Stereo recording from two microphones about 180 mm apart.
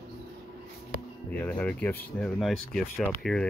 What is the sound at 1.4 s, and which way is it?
Speech, 10° left (ahead or behind).